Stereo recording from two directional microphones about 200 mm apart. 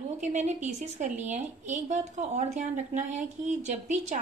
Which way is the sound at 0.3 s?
35° right (ahead or behind).